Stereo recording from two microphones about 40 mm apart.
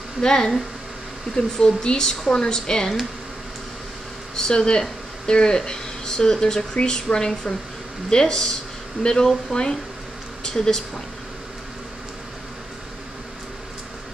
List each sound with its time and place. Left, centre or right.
0.2 s speech: centre
4.4 s speech: centre